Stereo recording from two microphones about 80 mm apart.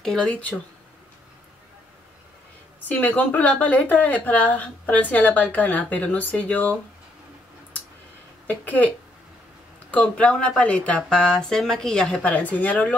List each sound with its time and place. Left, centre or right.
0.0 s speech: centre
2.9 s a woman's voice: centre
8.5 s a woman's voice: centre